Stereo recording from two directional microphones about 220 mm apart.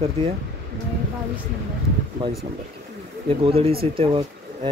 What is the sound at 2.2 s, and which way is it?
Speech, 20° right (ahead or behind).